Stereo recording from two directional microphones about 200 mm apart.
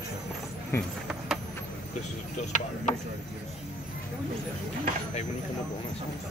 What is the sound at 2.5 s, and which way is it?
Speech, 35° left (ahead or behind).